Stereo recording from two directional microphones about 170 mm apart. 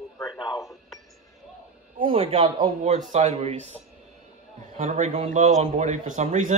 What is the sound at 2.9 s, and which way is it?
Speech, 40° right (ahead or behind).